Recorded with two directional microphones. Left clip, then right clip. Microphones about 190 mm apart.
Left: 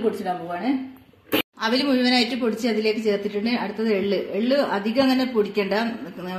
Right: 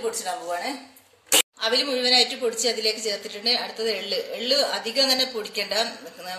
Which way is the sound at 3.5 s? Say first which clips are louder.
Right 1 dB; 35° left (ahead or behind).